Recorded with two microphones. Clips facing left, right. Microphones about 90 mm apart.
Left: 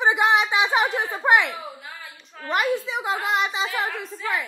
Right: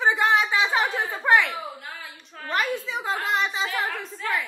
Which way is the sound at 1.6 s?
Centre (ahead or behind).